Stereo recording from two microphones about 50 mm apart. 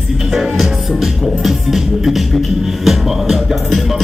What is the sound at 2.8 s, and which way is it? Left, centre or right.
Music, centre.